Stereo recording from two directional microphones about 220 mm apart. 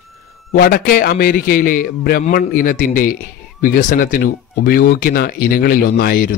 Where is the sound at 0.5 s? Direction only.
40° left (ahead or behind).